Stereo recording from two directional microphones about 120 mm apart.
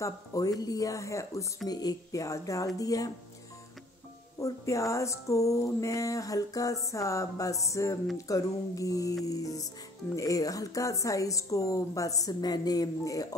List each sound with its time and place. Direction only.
0.0 s speech: 30° left (ahead or behind)
4.4 s speech: 25° left (ahead or behind)